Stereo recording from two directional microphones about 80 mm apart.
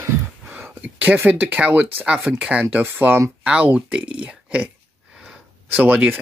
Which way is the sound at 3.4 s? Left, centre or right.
Centre.